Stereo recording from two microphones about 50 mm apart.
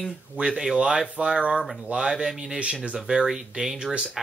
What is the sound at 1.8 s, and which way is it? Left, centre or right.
Speech, right.